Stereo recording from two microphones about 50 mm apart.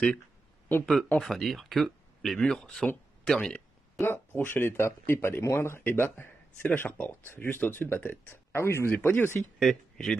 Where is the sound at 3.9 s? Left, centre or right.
Left.